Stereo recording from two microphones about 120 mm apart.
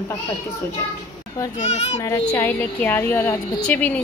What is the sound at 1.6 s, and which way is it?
Speech, 70° left (ahead or behind).